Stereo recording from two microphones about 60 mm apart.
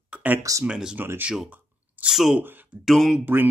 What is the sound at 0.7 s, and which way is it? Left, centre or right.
Speech, centre.